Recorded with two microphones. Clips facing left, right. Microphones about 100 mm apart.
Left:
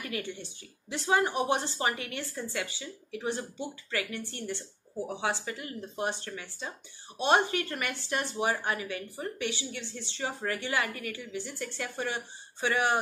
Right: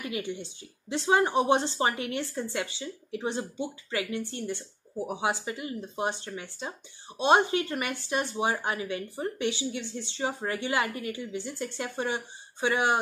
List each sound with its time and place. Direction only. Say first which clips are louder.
0.0 s a woman's voice: right 3 dB; 20° right (ahead or behind)